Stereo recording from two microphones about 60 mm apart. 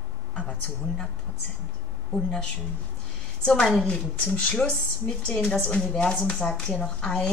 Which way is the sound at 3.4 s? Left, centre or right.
Centre.